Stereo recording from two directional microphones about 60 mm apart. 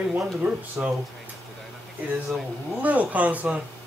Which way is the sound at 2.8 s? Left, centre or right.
Right.